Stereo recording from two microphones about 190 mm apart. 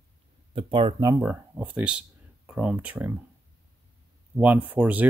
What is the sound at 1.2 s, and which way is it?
Speech, 10° right (ahead or behind).